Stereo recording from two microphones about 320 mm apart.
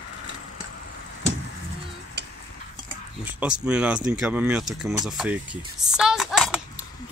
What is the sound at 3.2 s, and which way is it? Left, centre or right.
Speech, centre.